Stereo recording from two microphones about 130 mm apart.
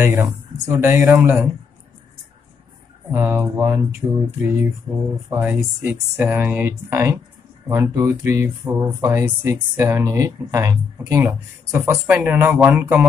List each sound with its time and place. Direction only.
0.0 s speech: 20° right (ahead or behind)
3.1 s speech: 15° right (ahead or behind)
4.0 s mantra: 30° right (ahead or behind)
5.3 s speech: 15° right (ahead or behind)